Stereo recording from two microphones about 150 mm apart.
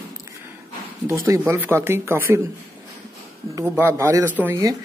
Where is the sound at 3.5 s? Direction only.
15° right (ahead or behind).